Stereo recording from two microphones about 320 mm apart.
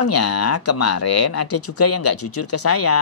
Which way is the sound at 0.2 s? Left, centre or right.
Left.